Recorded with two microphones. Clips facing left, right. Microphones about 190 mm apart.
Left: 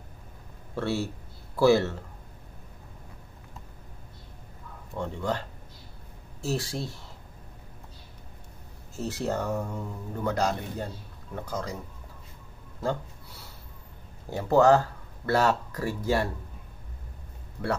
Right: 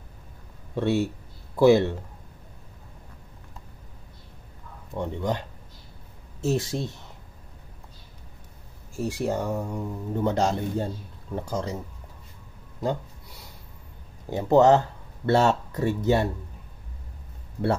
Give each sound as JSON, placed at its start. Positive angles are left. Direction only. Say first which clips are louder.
{"t": 0.7, "sound": "speech", "louder": "right 5 dB", "side_deg": -20}
{"t": 4.9, "sound": "speech", "louder": "right 2 dB", "side_deg": -20}
{"t": 6.4, "sound": "speech", "louder": "right 5 dB", "side_deg": -20}
{"t": 8.9, "sound": "speech", "louder": "right 3 dB", "side_deg": -15}
{"t": 14.3, "sound": "speech", "louder": "right 2 dB", "side_deg": -20}